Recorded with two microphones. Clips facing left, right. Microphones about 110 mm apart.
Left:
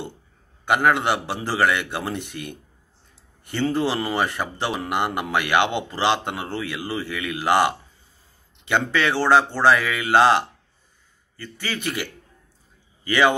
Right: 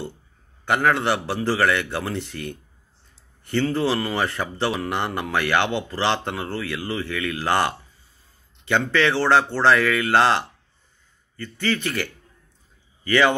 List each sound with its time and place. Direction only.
0.7 s speech: 15° left (ahead or behind)